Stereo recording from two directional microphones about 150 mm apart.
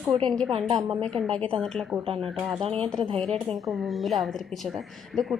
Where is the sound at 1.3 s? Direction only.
40° right (ahead or behind).